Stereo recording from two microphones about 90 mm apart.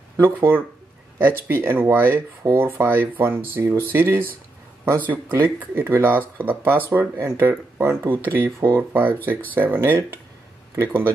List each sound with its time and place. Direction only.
0.2 s speech: 25° right (ahead or behind)